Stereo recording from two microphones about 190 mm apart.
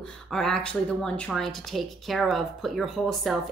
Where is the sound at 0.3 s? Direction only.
Centre (ahead or behind).